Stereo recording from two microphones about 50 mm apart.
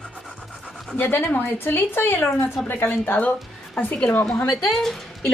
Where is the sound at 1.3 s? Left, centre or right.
Left.